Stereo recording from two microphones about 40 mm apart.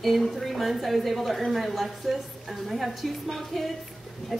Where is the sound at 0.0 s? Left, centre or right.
Centre.